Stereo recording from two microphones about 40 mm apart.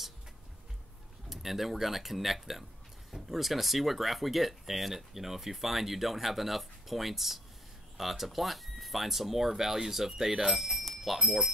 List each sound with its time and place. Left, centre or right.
1.3 s speech: centre
11.1 s speech: centre